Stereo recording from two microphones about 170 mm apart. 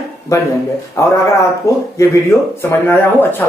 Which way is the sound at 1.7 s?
15° left (ahead or behind).